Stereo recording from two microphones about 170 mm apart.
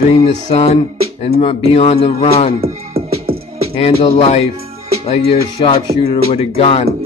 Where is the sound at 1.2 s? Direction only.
35° left (ahead or behind).